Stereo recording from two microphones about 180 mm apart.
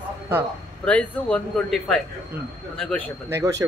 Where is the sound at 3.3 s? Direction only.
15° right (ahead or behind).